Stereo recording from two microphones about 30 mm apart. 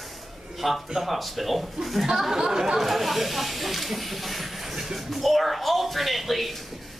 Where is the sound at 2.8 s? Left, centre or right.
Centre.